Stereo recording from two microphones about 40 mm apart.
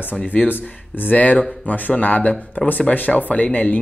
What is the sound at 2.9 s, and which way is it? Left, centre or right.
Speech, left.